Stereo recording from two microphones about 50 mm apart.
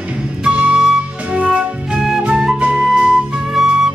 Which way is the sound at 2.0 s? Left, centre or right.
Centre.